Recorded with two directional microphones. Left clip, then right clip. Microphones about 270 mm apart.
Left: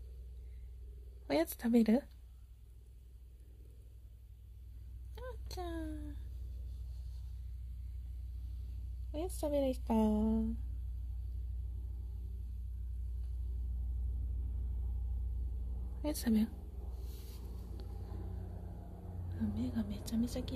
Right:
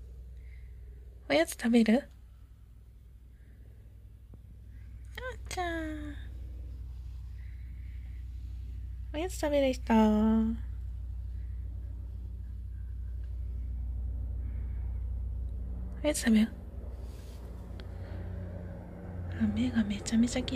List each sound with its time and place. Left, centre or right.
1.2 s a woman's voice: centre
5.1 s a sound: centre
9.1 s a woman's voice: centre
16.0 s a woman's voice: centre
19.2 s a woman's voice: centre